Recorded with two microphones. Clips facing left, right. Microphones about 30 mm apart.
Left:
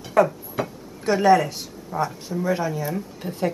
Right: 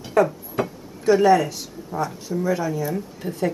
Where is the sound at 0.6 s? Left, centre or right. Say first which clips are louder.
Right 2 dB; centre.